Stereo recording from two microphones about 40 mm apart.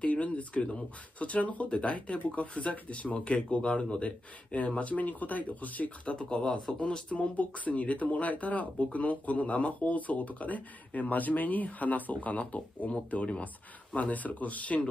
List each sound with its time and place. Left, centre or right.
0.0 s speech: left
6.0 s speech: left